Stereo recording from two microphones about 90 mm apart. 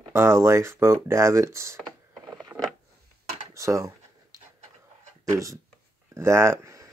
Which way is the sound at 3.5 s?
35° right (ahead or behind).